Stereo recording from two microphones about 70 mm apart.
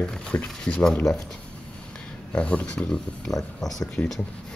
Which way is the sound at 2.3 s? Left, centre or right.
Centre.